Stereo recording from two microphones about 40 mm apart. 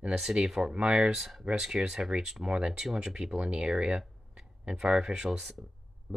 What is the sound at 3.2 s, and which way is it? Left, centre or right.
Speech, right.